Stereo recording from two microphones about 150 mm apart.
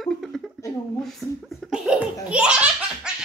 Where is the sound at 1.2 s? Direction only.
Centre (ahead or behind).